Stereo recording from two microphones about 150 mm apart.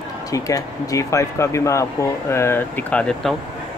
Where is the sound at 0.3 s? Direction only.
20° left (ahead or behind).